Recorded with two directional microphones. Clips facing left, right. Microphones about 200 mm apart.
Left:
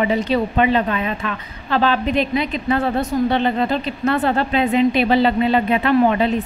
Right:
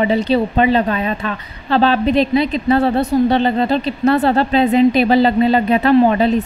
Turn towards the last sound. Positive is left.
turn(degrees=-35)  # may be behind; listen again after turning